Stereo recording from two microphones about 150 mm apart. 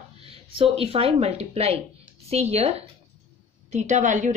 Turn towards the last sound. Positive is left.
turn(degrees=-55)  # may be behind; listen again after turning